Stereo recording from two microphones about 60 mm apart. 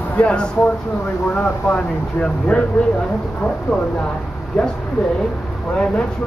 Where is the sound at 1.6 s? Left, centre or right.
Centre.